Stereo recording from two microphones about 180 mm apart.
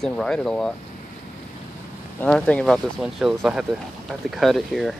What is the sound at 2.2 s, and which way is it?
Speech, 5° left (ahead or behind).